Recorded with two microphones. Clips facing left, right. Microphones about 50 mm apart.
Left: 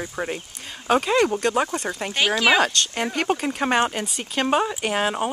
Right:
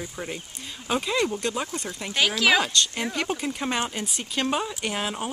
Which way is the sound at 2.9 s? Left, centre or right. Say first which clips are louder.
Left 5 dB; left.